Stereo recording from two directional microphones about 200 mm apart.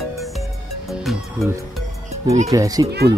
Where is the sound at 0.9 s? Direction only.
Centre (ahead or behind).